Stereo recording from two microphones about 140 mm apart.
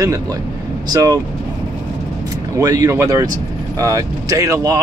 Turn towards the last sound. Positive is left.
turn(degrees=-25)  # may be behind; listen again after turning